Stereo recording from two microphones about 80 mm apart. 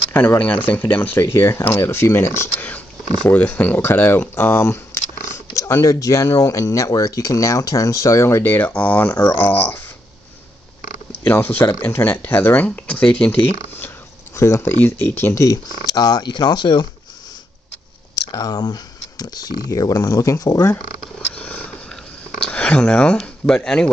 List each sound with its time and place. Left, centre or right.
0.1 s speech: left
2.6 s speech: left
11.2 s speech: left
14.3 s speech: left
15.3 s speech: left
15.7 s speech: left
18.3 s speech: left
19.7 s speech: left
21.4 s purr: centre
22.4 s speech: centre